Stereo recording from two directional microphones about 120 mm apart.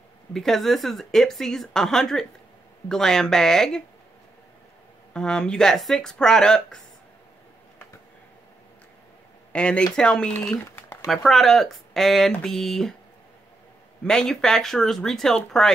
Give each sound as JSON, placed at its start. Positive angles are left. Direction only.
{"t": 0.3, "sound": "a woman's voice", "side_deg": 0}
{"t": 5.1, "sound": "a woman's voice", "side_deg": 5}
{"t": 9.5, "sound": "speech", "side_deg": 10}
{"t": 10.8, "sound": "a sound", "side_deg": 20}
{"t": 11.1, "sound": "a woman's voice", "side_deg": 0}
{"t": 14.0, "sound": "a woman's voice", "side_deg": 5}